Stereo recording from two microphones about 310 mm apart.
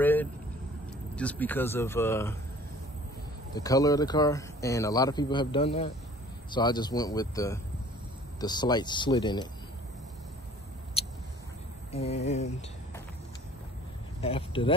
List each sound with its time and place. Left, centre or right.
0.0 s vehicle: centre
1.1 s speech: centre
3.5 s speech: centre
11.0 s a sound: centre
14.2 s speech: centre